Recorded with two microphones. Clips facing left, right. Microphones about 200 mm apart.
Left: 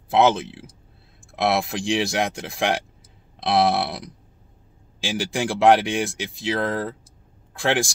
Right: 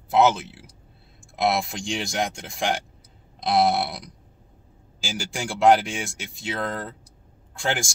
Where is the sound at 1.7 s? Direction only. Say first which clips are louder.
Left 7 dB; centre (ahead or behind).